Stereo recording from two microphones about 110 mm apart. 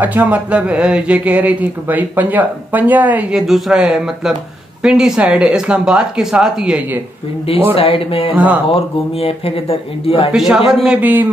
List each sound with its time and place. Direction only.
0.0 s speech: 15° right (ahead or behind)
7.7 s speech: 60° left (ahead or behind)
10.3 s a man's voice: 5° right (ahead or behind)
11.0 s speech: 15° right (ahead or behind)